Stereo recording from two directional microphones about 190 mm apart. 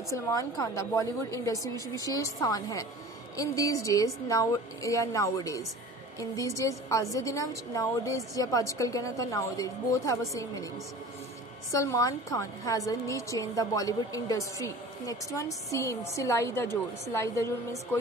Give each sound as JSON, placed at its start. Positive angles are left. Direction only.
{"t": 0.1, "sound": "a woman's voice", "side_deg": 20}
{"t": 11.7, "sound": "a woman's voice", "side_deg": 15}